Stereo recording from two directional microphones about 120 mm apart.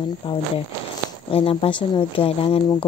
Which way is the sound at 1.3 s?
50° left (ahead or behind).